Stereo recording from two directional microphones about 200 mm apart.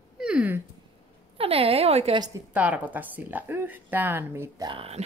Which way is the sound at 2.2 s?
10° right (ahead or behind).